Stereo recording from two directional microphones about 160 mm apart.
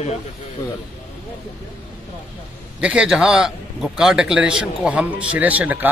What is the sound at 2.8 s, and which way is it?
A man's voice, 5° right (ahead or behind).